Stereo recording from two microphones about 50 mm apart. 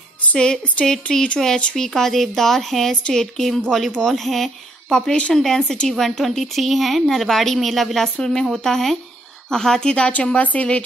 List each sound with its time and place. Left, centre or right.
0.4 s a woman's voice: centre
8.0 s a woman's voice: centre; by 10.8 s left